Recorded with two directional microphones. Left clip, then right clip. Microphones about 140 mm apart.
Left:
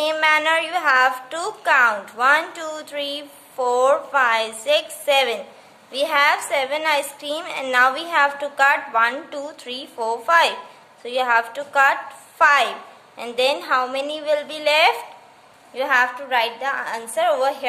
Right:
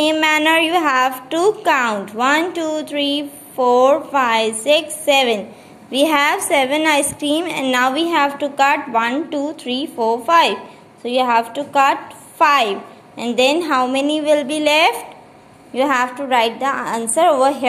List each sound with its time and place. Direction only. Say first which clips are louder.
0.0 s a woman's voice: right 3 dB; 25° right (ahead or behind)